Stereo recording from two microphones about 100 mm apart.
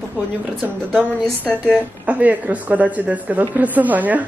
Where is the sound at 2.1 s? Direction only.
15° right (ahead or behind).